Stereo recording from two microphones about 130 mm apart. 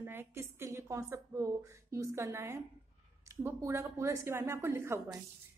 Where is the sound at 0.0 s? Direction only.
15° right (ahead or behind).